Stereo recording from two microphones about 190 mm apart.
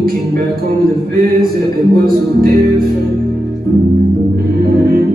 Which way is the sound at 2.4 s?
50° right (ahead or behind).